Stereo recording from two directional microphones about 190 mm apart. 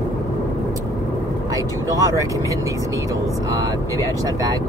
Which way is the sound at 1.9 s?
15° right (ahead or behind).